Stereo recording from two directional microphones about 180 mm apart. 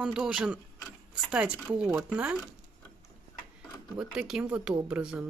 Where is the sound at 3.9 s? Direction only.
5° right (ahead or behind).